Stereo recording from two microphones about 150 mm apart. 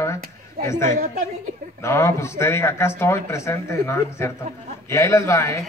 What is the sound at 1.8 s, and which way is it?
A man's voice, 20° left (ahead or behind).